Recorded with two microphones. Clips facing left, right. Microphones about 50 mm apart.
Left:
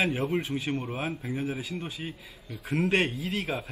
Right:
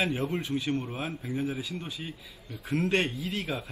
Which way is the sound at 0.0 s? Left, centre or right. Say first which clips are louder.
Left 2 dB; left.